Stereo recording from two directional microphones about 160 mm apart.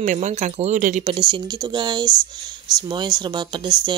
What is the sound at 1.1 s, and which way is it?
Speech, 30° right (ahead or behind).